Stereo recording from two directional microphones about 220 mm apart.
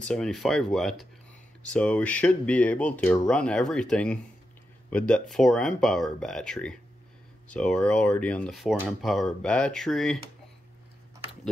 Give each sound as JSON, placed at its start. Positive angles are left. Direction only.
{"t": 0.0, "sound": "speech", "side_deg": 5}